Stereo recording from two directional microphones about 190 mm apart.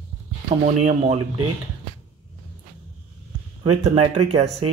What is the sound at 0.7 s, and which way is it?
Speech, 40° right (ahead or behind).